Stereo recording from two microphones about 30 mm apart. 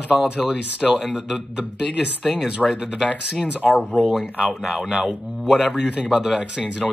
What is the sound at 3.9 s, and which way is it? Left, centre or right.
Speech, centre.